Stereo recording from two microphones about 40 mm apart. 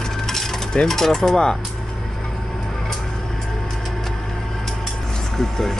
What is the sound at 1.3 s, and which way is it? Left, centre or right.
Speech, centre.